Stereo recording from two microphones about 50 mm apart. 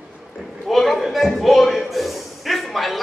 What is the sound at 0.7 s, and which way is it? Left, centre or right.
A man's voice, centre.